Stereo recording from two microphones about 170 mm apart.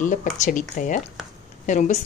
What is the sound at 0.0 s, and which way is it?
Speech, 50° left (ahead or behind).